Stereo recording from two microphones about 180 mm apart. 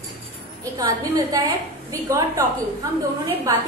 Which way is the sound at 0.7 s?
20° right (ahead or behind).